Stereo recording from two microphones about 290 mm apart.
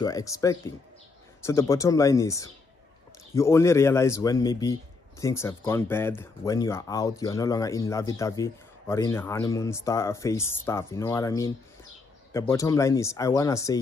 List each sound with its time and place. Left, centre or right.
0.0 s speech: centre